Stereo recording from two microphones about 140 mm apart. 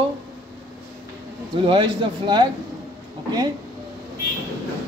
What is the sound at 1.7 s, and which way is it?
Speech, 35° right (ahead or behind).